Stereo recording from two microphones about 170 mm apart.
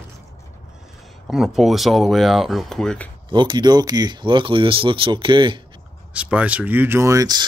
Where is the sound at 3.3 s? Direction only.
25° right (ahead or behind).